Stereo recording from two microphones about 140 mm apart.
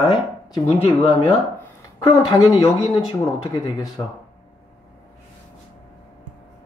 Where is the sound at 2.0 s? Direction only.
40° left (ahead or behind).